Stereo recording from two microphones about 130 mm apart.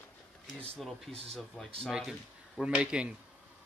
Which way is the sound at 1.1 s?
50° right (ahead or behind).